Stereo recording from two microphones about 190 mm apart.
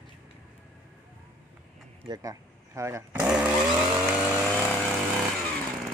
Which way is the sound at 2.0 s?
15° right (ahead or behind).